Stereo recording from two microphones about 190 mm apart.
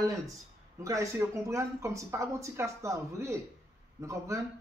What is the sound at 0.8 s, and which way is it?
Speech, 15° right (ahead or behind).